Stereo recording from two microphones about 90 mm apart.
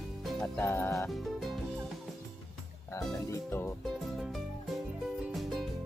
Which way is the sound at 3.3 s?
30° left (ahead or behind).